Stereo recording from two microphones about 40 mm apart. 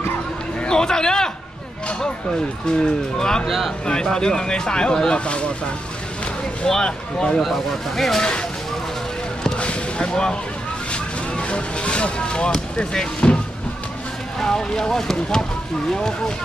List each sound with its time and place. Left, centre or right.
0.7 s a sound: centre
2.8 s speech: centre
3.4 s speech: centre
3.8 s speech: centre
6.6 s speech: centre
7.4 s speech: centre
8.2 s speech: left
9.6 s music: left
10.9 s speech: left
14.4 s speech: centre